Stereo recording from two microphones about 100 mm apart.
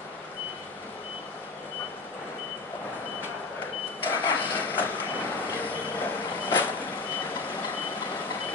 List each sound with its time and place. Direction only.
4.0 s vehicle: 20° left (ahead or behind)